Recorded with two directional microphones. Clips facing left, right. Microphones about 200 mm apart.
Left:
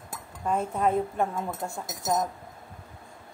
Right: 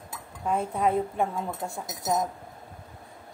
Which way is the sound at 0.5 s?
5° right (ahead or behind).